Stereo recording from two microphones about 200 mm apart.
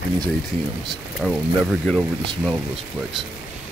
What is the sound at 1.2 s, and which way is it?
Speech, centre (ahead or behind).